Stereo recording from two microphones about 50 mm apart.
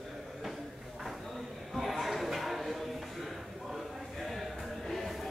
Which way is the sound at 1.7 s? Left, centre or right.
Centre.